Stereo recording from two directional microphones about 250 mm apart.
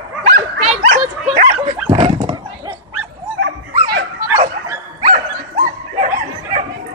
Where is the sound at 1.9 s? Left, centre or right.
Right.